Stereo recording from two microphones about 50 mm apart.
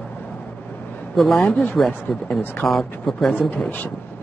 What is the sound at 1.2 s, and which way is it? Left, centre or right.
Speech, centre.